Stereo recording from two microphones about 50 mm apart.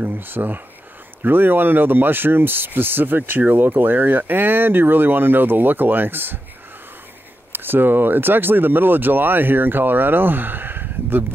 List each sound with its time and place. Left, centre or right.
0.1 s speech: right
7.5 s speech: right